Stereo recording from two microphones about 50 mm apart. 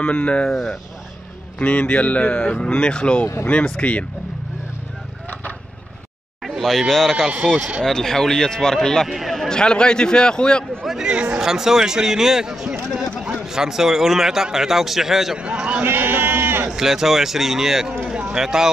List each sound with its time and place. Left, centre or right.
0.0 s speech: left
0.5 s speech: centre
1.6 s speech: left
6.4 s speech: centre
7.3 s a man's voice: right
7.8 s speech: centre
9.0 s speech: centre
9.5 s speech: centre
10.9 s a man's voice: centre
15.3 s a man's voice: centre
15.8 s sheep: right
16.6 s a man's voice: centre